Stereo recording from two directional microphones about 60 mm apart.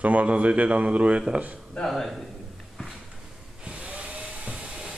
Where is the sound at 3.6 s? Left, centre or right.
Centre.